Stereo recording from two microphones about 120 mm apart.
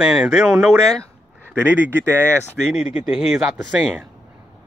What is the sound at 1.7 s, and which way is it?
Speech, 15° right (ahead or behind).